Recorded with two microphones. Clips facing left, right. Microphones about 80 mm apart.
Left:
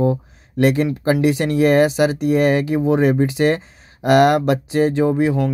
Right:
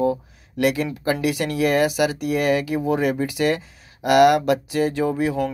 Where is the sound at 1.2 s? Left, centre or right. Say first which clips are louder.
Left 6 dB; left.